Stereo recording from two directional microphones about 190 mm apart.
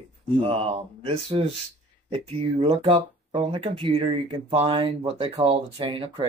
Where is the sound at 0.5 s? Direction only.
30° right (ahead or behind).